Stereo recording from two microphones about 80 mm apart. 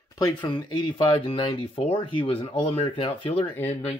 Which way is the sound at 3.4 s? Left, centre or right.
Left.